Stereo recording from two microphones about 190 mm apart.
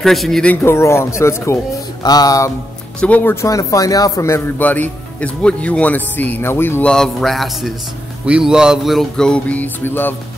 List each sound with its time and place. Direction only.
0.0 s speech: centre (ahead or behind)
2.0 s music: 20° left (ahead or behind)
3.0 s speech: 10° left (ahead or behind)
8.3 s music: 5° right (ahead or behind)